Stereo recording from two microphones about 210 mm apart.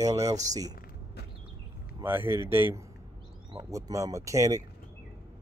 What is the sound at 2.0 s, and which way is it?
Speech, 10° right (ahead or behind).